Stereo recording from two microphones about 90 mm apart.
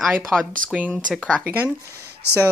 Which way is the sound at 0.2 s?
5° left (ahead or behind).